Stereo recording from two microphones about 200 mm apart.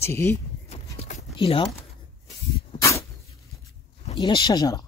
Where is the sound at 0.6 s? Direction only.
30° left (ahead or behind).